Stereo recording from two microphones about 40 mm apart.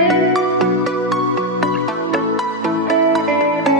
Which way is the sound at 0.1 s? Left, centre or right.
Centre.